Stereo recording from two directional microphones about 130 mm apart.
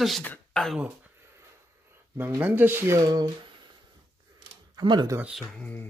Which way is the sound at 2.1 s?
15° right (ahead or behind).